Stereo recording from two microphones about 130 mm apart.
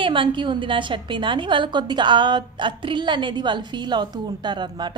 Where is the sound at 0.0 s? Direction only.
40° right (ahead or behind).